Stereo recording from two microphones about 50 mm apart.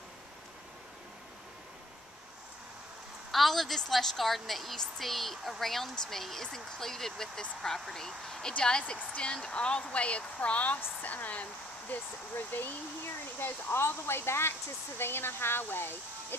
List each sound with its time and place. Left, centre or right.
3.3 s a woman's voice: centre; by 12.6 s left
13.4 s speech: left